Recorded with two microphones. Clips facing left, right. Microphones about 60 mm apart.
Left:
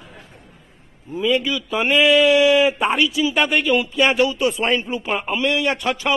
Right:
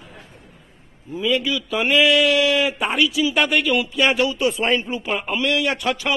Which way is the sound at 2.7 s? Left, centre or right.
Centre.